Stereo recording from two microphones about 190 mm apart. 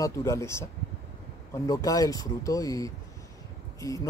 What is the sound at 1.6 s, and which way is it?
Speech, 20° left (ahead or behind).